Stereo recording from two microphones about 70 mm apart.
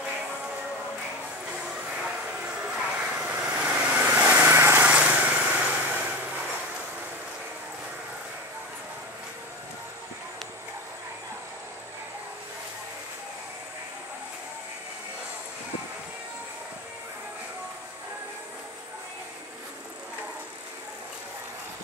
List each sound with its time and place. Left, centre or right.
2.0 s vehicle: centre
4.5 s lawn mower: right
4.7 s vehicle: centre